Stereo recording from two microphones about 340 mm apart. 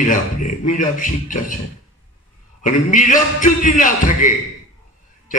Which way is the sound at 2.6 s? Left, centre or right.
Left.